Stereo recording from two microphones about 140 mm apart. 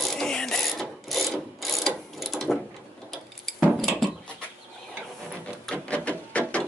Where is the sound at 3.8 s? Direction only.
Centre (ahead or behind).